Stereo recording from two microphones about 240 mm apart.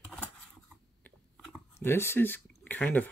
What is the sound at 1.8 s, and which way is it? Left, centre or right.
Speech, centre.